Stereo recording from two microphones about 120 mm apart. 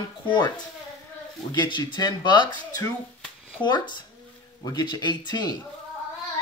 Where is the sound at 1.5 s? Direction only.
40° left (ahead or behind).